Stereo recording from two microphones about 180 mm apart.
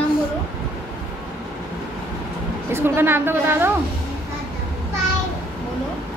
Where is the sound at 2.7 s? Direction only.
10° right (ahead or behind).